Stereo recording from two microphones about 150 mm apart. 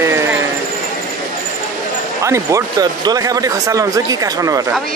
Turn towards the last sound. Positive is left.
turn(degrees=-20)  # may be behind; listen again after turning